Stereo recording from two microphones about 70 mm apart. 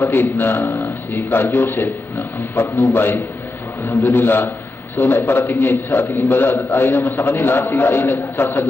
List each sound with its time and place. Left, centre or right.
0.0 s a man's voice: left
7.0 s a man's voice: left